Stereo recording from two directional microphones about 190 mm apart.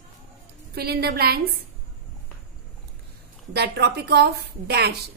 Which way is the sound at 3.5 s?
60° right (ahead or behind).